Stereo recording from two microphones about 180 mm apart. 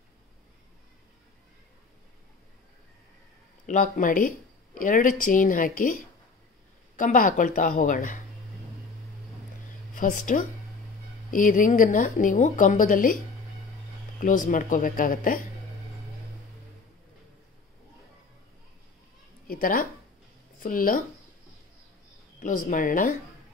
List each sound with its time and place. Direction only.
3.6 s speech: 45° left (ahead or behind)
9.9 s speech: 45° left (ahead or behind)
14.2 s speech: 45° left (ahead or behind)
19.4 s speech: 50° left (ahead or behind)
22.4 s speech: 45° left (ahead or behind)